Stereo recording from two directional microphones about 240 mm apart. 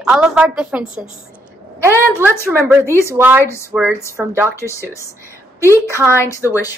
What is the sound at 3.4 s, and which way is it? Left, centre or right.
Speech, centre.